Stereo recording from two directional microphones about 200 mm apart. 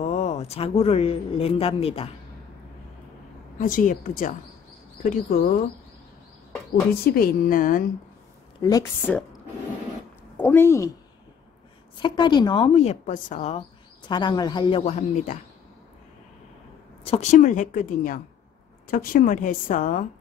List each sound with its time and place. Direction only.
0.0 s speech: 35° left (ahead or behind)
3.5 s a woman's voice: 40° left (ahead or behind)
6.9 s a woman's voice: 45° left (ahead or behind)
8.5 s speech: 20° left (ahead or behind)
10.3 s a woman's voice: 10° left (ahead or behind)
12.0 s speech: 25° left (ahead or behind)
13.0 s speech: 40° left (ahead or behind)
17.0 s a woman's voice: 30° left (ahead or behind)